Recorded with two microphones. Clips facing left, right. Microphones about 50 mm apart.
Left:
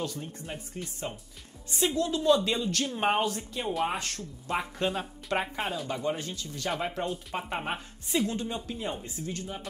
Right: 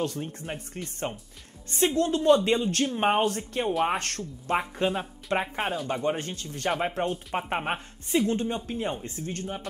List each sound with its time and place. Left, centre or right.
0.0 s a woman's voice: right
3.2 s a woman's voice: right
4.2 s speech: right
5.4 s speech: centre
6.0 s speech: right
9.0 s speech: right